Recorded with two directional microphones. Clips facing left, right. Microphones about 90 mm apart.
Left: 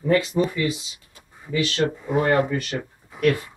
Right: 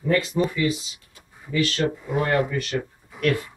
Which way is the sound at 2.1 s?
30° left (ahead or behind).